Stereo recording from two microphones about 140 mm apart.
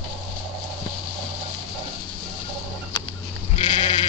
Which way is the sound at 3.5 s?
40° left (ahead or behind).